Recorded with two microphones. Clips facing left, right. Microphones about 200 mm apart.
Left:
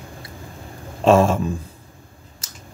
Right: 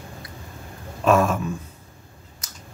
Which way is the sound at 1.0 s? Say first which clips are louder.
Left 4 dB; 25° left (ahead or behind).